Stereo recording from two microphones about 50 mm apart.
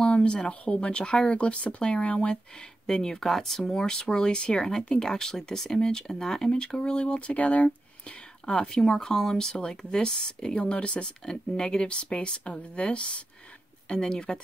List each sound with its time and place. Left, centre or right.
0.0 s speech: centre
2.9 s speech: centre